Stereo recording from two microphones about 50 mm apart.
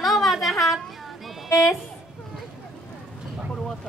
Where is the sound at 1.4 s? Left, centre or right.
Left.